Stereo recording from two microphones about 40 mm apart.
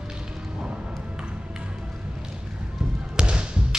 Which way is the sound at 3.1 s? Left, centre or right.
Right.